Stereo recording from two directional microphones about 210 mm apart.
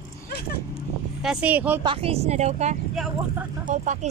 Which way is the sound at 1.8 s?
25° right (ahead or behind).